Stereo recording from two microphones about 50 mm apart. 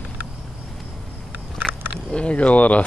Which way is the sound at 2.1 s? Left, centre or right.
Left.